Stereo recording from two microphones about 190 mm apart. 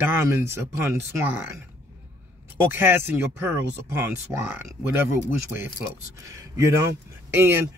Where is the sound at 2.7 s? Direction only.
10° right (ahead or behind).